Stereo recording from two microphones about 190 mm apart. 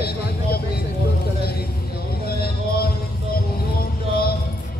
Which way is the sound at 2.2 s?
55° left (ahead or behind).